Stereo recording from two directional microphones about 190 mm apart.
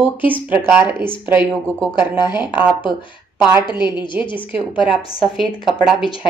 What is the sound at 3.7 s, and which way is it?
Speech, 25° left (ahead or behind).